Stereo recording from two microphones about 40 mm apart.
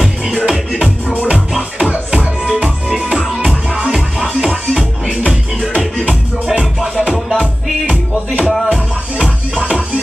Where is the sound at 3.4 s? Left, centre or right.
Right.